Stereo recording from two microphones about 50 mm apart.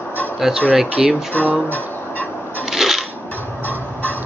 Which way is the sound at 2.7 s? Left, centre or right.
Centre.